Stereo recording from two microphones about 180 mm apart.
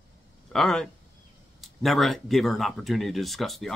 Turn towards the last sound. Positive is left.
turn(degrees=0)  # may be behind; listen again after turning